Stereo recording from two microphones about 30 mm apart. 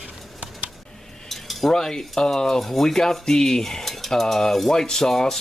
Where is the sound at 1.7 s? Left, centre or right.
Centre.